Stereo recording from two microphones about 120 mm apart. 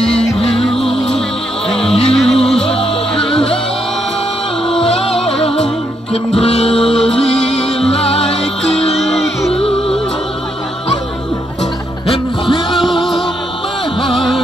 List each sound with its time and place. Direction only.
0.4 s music: 55° left (ahead or behind)
0.7 s music: centre (ahead or behind)
2.7 s music: 50° left (ahead or behind)
4.7 s music: 55° left (ahead or behind)
7.9 s music: 55° left (ahead or behind)
8.9 s music: centre (ahead or behind)
9.5 s music: 50° left (ahead or behind)
12.1 s music: 45° left (ahead or behind)